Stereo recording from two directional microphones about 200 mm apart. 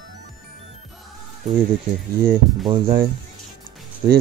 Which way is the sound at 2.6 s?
25° right (ahead or behind).